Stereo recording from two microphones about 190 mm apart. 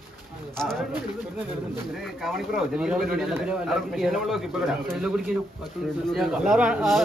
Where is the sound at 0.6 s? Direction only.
5° left (ahead or behind).